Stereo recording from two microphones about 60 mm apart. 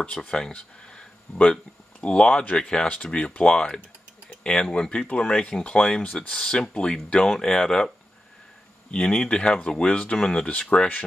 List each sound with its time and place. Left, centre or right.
0.0 s speech: centre
8.9 s speech: centre
10.1 s speech: centre